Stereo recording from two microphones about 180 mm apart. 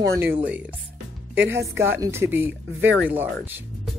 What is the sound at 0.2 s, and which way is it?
Speech, 10° right (ahead or behind).